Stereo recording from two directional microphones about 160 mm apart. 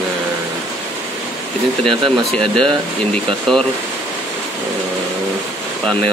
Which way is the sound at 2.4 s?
30° right (ahead or behind).